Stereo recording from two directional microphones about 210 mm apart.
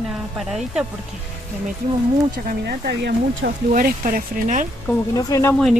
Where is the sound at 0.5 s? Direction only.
5° right (ahead or behind).